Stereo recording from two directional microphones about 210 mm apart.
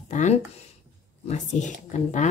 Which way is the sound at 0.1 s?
35° left (ahead or behind).